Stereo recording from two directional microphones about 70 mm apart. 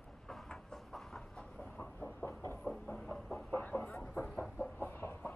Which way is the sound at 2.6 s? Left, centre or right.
Centre.